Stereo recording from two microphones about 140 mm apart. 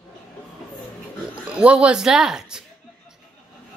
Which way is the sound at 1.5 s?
10° right (ahead or behind).